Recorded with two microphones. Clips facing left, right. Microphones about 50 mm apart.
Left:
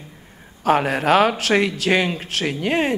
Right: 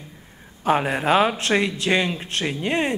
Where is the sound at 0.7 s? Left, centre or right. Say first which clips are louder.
Left 3 dB; centre.